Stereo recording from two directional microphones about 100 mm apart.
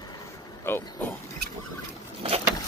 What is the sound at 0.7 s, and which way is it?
Vehicle, 25° left (ahead or behind).